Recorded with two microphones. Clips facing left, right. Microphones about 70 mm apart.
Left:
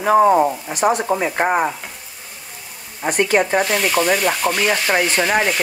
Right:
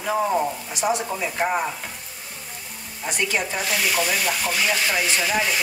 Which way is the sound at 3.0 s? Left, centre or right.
Left.